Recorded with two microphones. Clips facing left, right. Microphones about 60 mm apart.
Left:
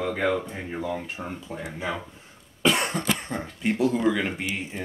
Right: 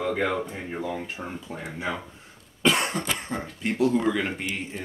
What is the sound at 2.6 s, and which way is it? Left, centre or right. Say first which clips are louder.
Cough: even; centre.